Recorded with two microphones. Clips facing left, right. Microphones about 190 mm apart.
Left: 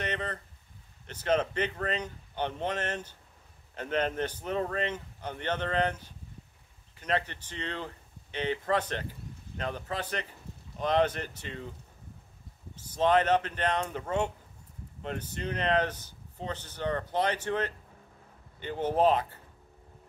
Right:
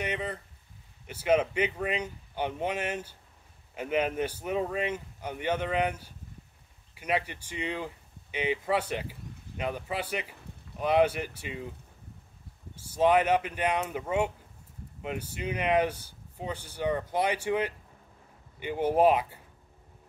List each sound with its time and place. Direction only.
0.0 s a sound: 10° right (ahead or behind)
1.0 s speech: 10° right (ahead or behind)
12.7 s speech: 10° right (ahead or behind)